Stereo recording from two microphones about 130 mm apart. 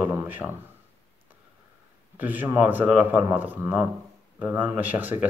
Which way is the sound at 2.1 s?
15° right (ahead or behind).